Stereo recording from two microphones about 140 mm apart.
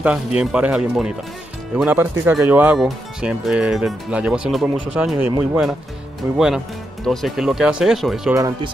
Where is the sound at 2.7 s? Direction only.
Centre (ahead or behind).